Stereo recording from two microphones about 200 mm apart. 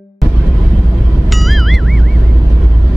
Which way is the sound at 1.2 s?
Centre (ahead or behind).